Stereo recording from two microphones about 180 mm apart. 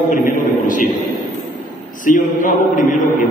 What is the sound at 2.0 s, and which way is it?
Speech, 45° left (ahead or behind).